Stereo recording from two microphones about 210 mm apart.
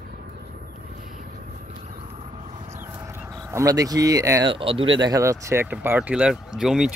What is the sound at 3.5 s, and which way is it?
Speech, 15° right (ahead or behind).